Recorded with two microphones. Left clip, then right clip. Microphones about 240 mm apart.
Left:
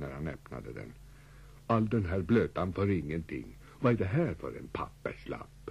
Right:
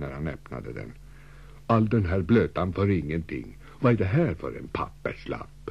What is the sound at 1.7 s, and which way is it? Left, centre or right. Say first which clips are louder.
A man's voice: right 6 dB; right.